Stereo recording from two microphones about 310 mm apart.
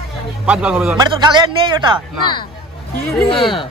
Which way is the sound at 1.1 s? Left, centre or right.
Centre.